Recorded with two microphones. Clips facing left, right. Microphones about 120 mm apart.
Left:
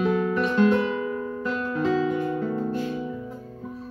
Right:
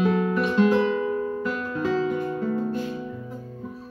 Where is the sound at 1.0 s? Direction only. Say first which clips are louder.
Right 3 dB; 15° right (ahead or behind).